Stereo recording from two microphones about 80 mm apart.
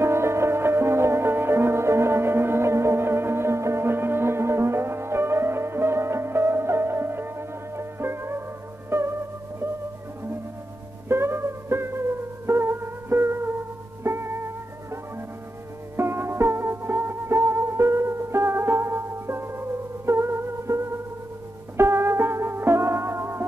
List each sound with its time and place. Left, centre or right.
0.0 s music: right
11.1 s music: right